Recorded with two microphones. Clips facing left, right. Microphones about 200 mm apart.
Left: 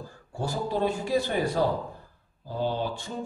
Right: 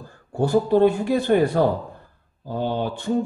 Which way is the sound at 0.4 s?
60° right (ahead or behind).